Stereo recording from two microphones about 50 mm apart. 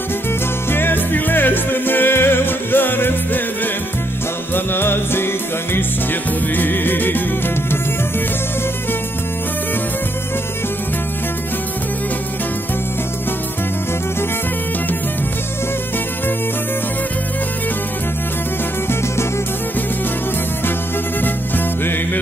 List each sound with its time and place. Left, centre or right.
0.7 s music: left
4.6 s music: left
21.2 s music: left